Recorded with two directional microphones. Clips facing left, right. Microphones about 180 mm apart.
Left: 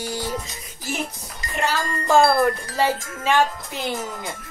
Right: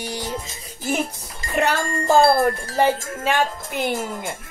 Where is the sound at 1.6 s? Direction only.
60° right (ahead or behind).